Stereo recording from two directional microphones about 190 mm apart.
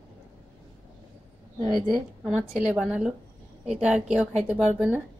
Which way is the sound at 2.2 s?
5° right (ahead or behind).